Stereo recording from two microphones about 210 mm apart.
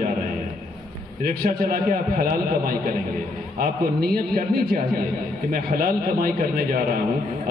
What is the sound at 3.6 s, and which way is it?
A man's voice, 45° right (ahead or behind).